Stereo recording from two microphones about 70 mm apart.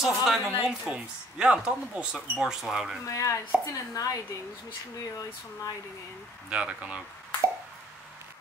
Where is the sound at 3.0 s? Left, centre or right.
Left.